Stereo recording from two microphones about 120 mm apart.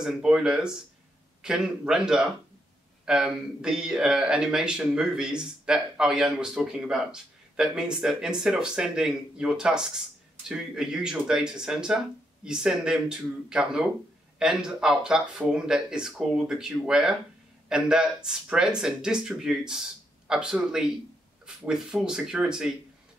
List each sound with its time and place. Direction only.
0.0 s speech: 5° right (ahead or behind)